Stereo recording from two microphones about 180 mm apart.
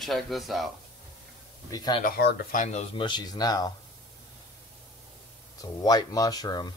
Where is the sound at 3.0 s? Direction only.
25° left (ahead or behind).